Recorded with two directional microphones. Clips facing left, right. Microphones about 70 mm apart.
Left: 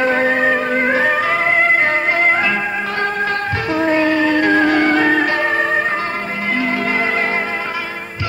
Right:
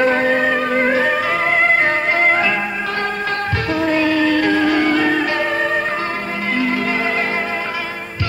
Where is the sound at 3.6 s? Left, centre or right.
Left.